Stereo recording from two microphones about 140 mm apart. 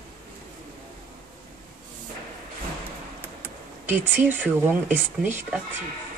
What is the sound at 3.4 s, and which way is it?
Speech, 15° right (ahead or behind).